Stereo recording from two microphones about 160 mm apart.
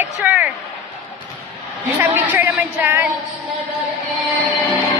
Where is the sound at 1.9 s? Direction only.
10° right (ahead or behind).